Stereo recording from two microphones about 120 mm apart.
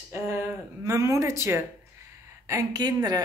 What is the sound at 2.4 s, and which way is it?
Speech, 30° right (ahead or behind).